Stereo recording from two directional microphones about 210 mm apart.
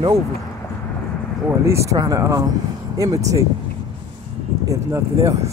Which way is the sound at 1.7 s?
15° right (ahead or behind).